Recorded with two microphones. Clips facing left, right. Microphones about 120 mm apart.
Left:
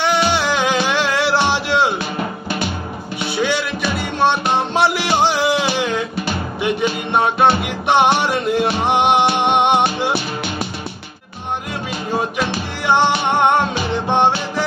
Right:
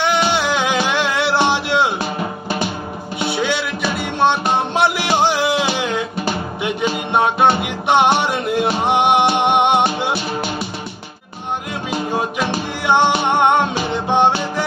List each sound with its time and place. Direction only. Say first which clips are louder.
0.0 s music: even; 15° right (ahead or behind)
4.2 s music: even; 15° right (ahead or behind)
12.8 s music: even; 15° right (ahead or behind)